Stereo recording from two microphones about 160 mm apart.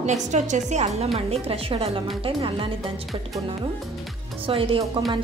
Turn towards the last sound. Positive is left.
turn(degrees=-35)  # may be behind; listen again after turning